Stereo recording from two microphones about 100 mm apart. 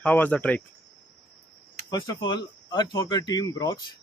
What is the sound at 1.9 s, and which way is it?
A man's voice, 40° left (ahead or behind).